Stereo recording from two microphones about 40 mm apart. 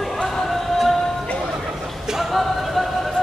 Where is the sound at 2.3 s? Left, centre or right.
Centre.